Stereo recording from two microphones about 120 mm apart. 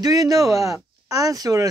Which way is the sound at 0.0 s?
30° right (ahead or behind).